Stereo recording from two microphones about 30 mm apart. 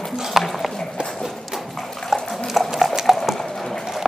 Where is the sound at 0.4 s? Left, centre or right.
Centre.